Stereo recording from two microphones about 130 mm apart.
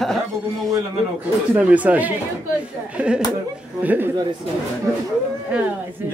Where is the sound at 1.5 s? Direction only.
10° right (ahead or behind).